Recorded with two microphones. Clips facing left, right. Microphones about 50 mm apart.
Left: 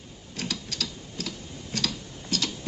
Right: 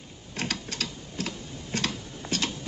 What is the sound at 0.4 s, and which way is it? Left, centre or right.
Tick-tock, right.